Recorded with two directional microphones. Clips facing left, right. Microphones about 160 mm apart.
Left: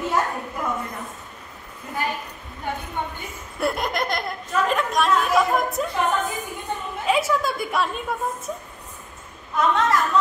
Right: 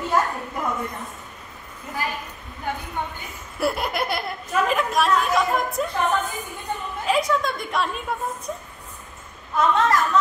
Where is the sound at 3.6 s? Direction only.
5° right (ahead or behind).